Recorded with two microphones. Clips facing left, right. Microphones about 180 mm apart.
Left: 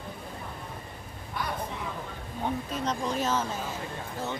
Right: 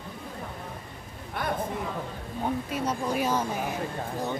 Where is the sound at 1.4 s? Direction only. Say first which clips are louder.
Right 3 dB; 55° right (ahead or behind).